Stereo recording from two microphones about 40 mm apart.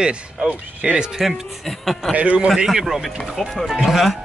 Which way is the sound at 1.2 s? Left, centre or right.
Centre.